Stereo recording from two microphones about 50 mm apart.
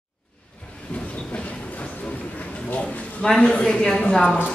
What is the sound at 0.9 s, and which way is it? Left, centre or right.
Train, left.